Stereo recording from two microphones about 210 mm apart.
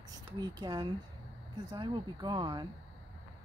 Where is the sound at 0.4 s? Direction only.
20° right (ahead or behind).